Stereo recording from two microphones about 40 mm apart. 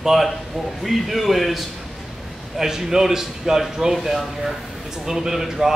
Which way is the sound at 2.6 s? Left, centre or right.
Centre.